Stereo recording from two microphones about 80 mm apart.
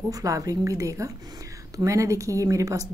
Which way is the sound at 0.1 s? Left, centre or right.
Right.